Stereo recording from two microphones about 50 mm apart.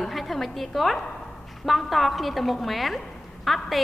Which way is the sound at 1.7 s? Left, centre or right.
Centre.